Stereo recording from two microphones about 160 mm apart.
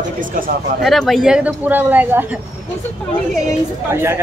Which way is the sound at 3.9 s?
15° right (ahead or behind).